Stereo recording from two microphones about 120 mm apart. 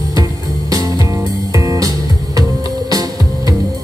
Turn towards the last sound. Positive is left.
turn(degrees=-30)  # may be behind; listen again after turning